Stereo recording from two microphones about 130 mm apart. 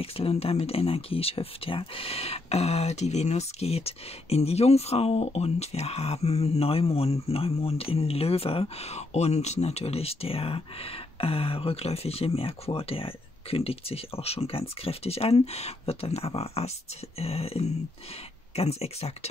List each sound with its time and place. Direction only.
0.0 s speech: 50° left (ahead or behind)